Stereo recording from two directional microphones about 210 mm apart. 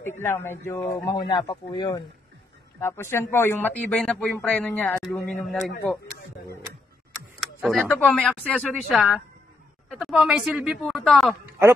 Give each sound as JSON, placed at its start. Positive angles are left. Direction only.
{"t": 0.2, "sound": "speech", "side_deg": 10}
{"t": 2.8, "sound": "a woman's voice", "side_deg": 10}
{"t": 7.3, "sound": "a sound", "side_deg": 0}
{"t": 8.0, "sound": "a woman's voice", "side_deg": 5}